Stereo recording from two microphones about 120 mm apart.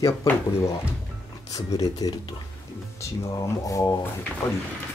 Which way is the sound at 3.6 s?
30° left (ahead or behind).